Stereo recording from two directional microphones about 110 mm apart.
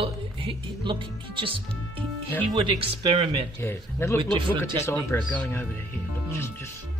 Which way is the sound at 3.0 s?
65° right (ahead or behind).